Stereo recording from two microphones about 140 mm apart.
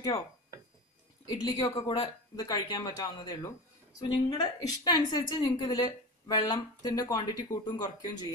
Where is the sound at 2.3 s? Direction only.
25° left (ahead or behind).